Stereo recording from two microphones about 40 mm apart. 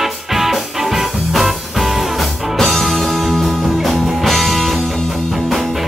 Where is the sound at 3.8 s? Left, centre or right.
Centre.